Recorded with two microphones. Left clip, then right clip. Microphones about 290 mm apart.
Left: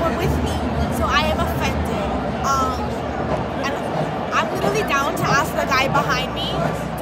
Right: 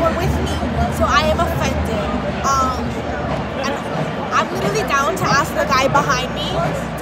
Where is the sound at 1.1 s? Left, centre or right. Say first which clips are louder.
Right 3 dB; centre.